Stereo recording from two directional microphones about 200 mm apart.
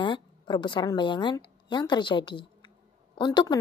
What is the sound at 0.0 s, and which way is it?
A woman's voice, 20° left (ahead or behind).